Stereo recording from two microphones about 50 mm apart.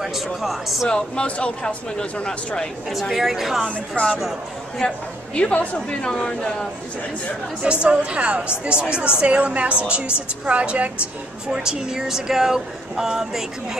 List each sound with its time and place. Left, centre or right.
0.0 s speech: centre
0.8 s speech: centre
2.9 s speech: centre
4.8 s speech: centre
5.9 s speech: centre
7.6 s a woman's voice: right